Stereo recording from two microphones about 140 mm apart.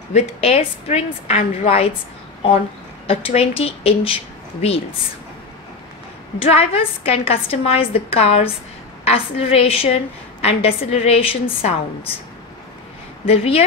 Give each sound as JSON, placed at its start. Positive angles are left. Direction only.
{"t": 0.1, "sound": "a woman's voice", "side_deg": 45}
{"t": 3.1, "sound": "a woman's voice", "side_deg": 45}
{"t": 6.5, "sound": "a woman's voice", "side_deg": 45}
{"t": 13.2, "sound": "a woman's voice", "side_deg": 45}